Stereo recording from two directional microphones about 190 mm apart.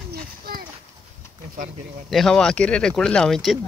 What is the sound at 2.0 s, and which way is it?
Speech, centre (ahead or behind).